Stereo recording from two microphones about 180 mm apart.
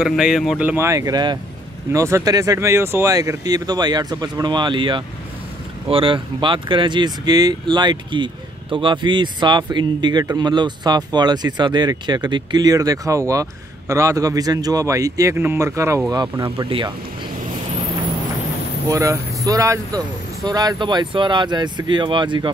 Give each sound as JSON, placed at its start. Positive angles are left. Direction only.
{"t": 0.0, "sound": "speech", "side_deg": 0}
{"t": 16.5, "sound": "speech", "side_deg": -30}
{"t": 18.9, "sound": "speech", "side_deg": -15}